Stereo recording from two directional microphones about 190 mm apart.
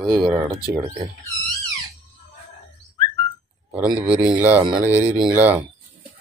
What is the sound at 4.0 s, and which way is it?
Speech, 5° right (ahead or behind).